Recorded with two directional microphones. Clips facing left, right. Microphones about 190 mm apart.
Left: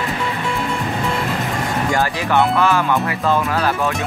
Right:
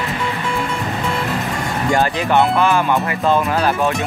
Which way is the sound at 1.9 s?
20° right (ahead or behind).